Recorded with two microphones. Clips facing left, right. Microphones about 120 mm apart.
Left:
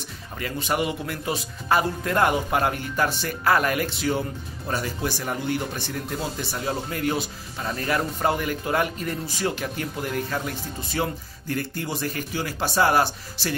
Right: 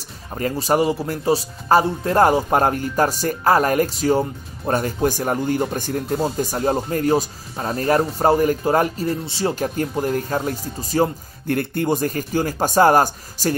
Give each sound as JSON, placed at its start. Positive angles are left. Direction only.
{"t": 0.0, "sound": "speech", "side_deg": -40}
{"t": 11.4, "sound": "speech", "side_deg": -55}